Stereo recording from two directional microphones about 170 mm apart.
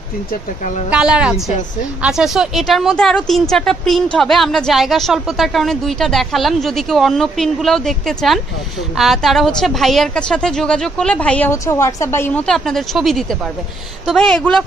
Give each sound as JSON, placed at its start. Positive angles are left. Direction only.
{"t": 0.8, "sound": "a woman's voice", "side_deg": -5}
{"t": 12.4, "sound": "a woman's voice", "side_deg": 0}